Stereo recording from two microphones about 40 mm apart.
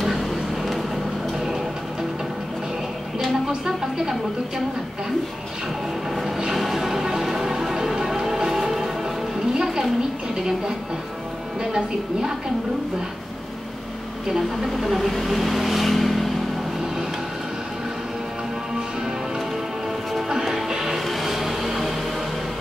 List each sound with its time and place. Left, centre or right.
0.0 s vehicle: centre
3.4 s speech: centre
6.5 s music: centre
11.7 s speech: centre
14.3 s speech: centre
20.2 s music: centre